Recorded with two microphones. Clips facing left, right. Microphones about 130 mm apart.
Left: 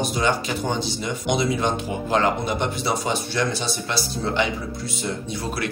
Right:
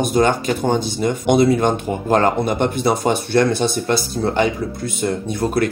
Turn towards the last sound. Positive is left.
turn(degrees=-50)  # may be behind; listen again after turning